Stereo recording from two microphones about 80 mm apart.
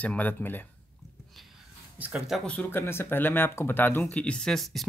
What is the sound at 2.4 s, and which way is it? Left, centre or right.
Speech, centre.